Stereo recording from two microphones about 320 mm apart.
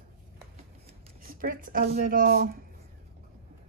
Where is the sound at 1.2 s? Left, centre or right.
Right.